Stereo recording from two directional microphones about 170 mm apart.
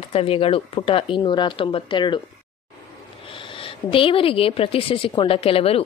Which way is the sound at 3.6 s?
30° left (ahead or behind).